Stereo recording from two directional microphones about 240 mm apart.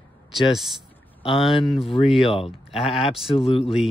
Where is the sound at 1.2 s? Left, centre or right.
Left.